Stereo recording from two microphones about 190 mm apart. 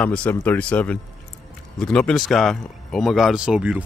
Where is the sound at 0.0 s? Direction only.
5° left (ahead or behind).